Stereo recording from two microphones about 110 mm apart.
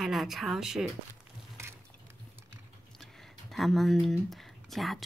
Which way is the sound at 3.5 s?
Centre (ahead or behind).